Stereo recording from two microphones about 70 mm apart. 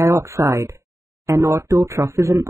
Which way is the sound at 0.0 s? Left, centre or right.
Right.